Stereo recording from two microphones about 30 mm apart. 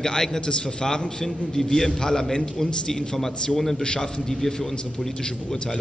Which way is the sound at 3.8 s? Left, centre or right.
Left.